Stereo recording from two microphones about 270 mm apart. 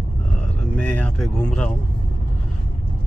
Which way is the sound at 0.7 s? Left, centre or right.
Centre.